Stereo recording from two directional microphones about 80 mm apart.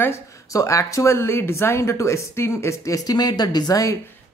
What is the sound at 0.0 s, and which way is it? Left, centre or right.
Speech, left.